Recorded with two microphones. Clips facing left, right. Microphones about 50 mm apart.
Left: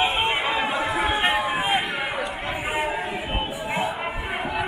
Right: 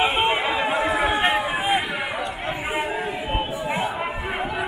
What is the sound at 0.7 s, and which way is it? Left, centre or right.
Chatter, right.